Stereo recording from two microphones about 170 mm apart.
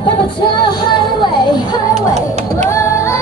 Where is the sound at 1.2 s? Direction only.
25° left (ahead or behind).